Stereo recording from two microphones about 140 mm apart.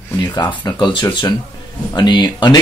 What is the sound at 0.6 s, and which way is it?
Speech, 30° left (ahead or behind).